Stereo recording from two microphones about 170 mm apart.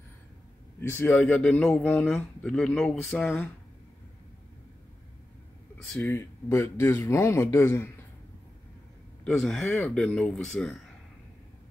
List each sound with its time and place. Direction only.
0.7 s speech: 10° left (ahead or behind)
5.9 s speech: 15° left (ahead or behind)
9.2 s speech: centre (ahead or behind)